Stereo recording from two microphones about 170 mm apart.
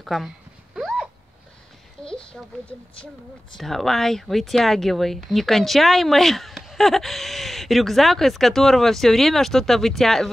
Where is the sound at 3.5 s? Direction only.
Centre (ahead or behind).